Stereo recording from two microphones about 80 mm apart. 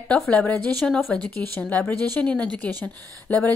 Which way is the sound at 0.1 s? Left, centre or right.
Centre.